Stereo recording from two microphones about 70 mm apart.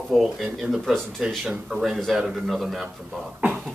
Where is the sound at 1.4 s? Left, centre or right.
Centre.